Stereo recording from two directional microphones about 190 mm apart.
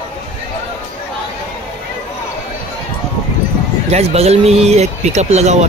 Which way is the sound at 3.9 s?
35° right (ahead or behind).